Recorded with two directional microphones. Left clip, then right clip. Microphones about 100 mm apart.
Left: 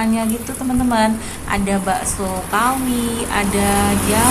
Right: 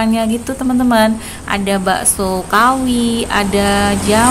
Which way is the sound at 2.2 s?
55° right (ahead or behind).